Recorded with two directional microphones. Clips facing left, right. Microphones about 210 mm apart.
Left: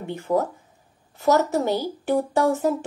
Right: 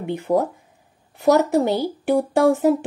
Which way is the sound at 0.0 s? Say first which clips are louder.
Right 3 dB; 15° right (ahead or behind).